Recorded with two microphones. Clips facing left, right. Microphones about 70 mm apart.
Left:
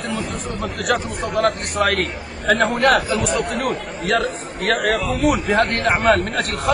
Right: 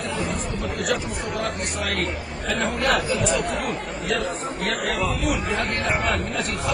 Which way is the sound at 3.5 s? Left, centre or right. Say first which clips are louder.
Left 4 dB; left.